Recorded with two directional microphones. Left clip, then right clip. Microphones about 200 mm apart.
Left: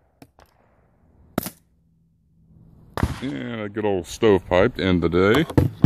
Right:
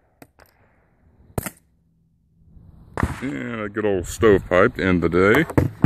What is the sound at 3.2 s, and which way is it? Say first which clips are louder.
Speech: right 2 dB; 5° right (ahead or behind).